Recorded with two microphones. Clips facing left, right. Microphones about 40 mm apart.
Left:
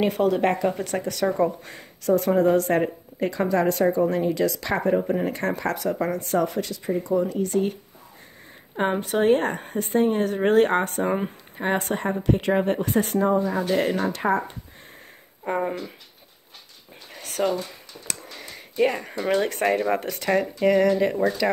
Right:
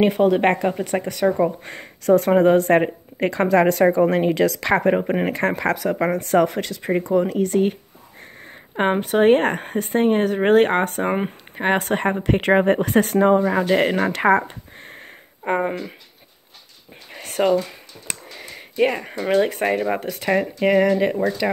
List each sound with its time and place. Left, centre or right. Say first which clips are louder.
0.3 s speech: right 4 dB; right
0.7 s speech: right 3 dB; right
1.6 s speech: right 5 dB; right
5.5 s speech: right 4 dB; right
6.3 s speech: right 6 dB; right
7.4 s speech: right 4 dB; right
12.4 s speech: right 6 dB; right
13.7 s speech: right 4 dB; right
14.0 s speech: right 6 dB; right
14.8 s a sound: right 6 dB; right
17.1 s a sound: right 6 dB; right
18.0 s a sound: right 2 dB; right
20.2 s speech: right 2 dB; centre